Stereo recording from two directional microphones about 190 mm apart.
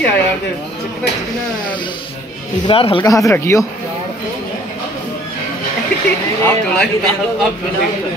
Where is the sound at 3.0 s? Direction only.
15° left (ahead or behind).